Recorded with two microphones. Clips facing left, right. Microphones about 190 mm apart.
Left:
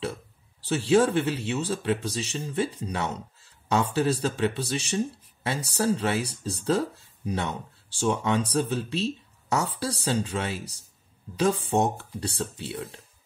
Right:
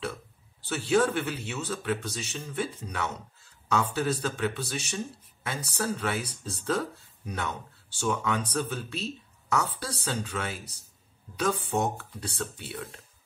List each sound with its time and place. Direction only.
0.7 s speech: 30° left (ahead or behind)